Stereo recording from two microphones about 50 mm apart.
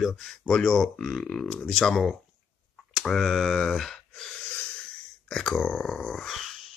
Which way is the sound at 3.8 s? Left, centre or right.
Centre.